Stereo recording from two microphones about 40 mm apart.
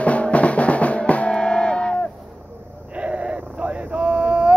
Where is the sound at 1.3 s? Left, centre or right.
Left.